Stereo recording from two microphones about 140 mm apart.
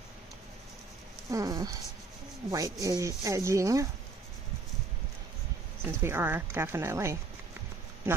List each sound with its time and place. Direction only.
1.3 s speech: 25° right (ahead or behind)
5.9 s speech: 15° right (ahead or behind)